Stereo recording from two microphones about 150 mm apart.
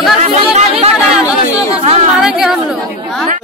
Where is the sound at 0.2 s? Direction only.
45° right (ahead or behind).